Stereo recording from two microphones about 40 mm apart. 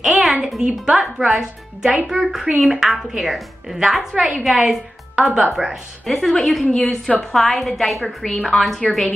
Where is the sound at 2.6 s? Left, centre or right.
Centre.